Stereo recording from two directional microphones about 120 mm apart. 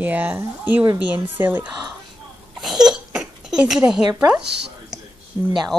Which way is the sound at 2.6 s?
5° right (ahead or behind).